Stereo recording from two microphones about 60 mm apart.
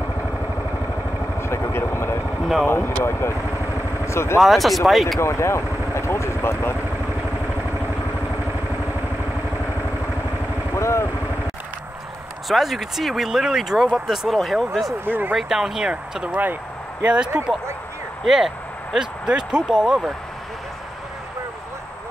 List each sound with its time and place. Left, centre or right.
1.4 s speech: left
4.4 s speech: centre
5.2 s speech: left
10.7 s vehicle: left
12.4 s speech: centre
15.0 s speech: right
15.3 s speech: centre
15.9 s speech: right
18.2 s speech: centre